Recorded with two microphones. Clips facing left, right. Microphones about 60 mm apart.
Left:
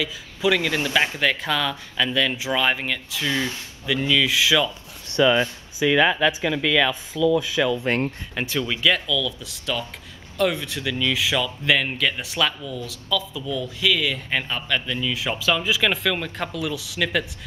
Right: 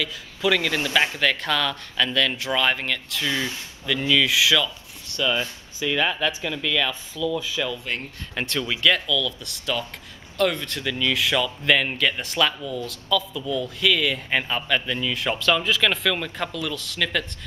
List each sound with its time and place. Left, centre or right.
0.0 s speech: centre
4.6 s a sound: left
5.8 s speech: centre
7.8 s speech: left
8.4 s speech: centre